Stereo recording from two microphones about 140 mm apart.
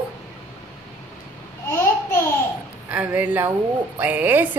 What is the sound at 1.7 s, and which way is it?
Babbling, 15° left (ahead or behind).